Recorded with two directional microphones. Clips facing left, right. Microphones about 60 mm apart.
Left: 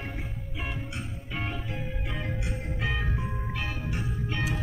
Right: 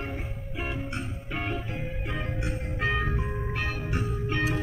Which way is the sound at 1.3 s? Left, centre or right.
Right.